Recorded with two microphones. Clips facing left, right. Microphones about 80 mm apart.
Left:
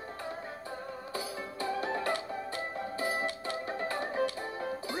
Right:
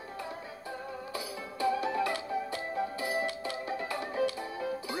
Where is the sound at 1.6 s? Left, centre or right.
Left.